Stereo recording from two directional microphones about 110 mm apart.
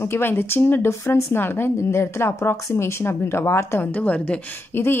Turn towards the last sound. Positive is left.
turn(degrees=20)  # may be behind; listen again after turning